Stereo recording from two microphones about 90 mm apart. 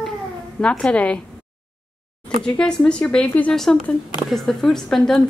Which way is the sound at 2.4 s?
10° left (ahead or behind).